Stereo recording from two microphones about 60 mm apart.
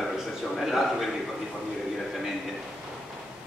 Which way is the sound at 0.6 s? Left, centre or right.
Centre.